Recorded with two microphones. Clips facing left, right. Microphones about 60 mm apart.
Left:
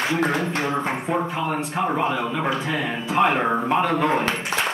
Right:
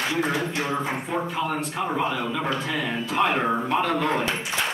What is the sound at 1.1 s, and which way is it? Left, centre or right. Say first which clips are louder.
Speech: left 3 dB; centre.